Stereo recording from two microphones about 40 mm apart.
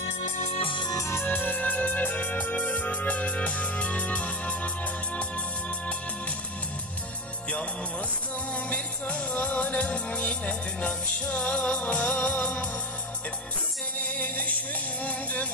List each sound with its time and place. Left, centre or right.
1.2 s music: left
1.6 s music: left
8.6 s music: left
9.3 s music: left
13.9 s music: left